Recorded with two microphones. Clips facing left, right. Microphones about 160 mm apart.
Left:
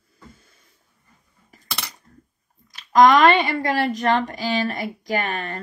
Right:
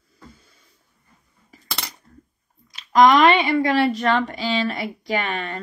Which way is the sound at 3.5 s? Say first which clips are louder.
Right 4 dB; 45° left (ahead or behind).